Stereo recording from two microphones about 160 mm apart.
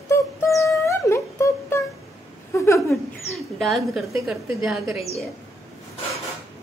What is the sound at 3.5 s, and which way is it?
Speech, centre (ahead or behind).